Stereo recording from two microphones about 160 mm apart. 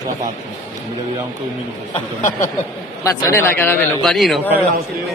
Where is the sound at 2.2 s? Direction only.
50° left (ahead or behind).